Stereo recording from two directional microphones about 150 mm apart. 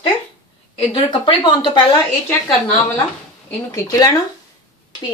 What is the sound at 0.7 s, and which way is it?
Speech, 35° left (ahead or behind).